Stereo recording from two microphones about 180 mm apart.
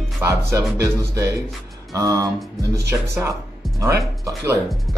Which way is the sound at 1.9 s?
20° right (ahead or behind).